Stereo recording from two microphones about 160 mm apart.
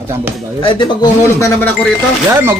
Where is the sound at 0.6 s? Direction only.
30° left (ahead or behind).